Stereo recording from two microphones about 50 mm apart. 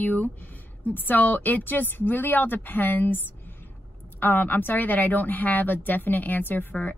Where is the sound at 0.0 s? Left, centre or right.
Left.